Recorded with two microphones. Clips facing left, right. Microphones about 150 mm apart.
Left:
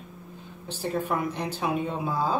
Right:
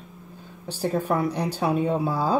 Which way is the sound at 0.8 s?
40° right (ahead or behind).